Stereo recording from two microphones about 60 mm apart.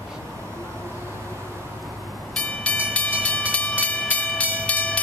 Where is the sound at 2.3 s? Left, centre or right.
Centre.